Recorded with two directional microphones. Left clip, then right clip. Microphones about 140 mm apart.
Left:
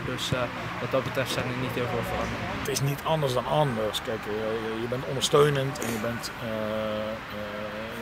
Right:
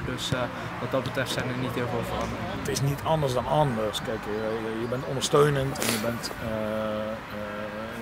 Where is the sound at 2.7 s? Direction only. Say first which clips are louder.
Right 1 dB; centre (ahead or behind).